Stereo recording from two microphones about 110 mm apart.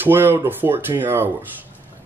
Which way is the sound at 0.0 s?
20° right (ahead or behind).